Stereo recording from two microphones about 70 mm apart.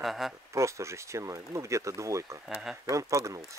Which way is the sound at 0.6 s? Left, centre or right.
Right.